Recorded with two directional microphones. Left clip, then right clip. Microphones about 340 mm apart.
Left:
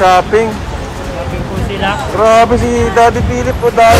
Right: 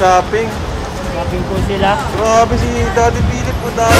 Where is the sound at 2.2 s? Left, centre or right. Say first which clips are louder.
Left 6 dB; centre.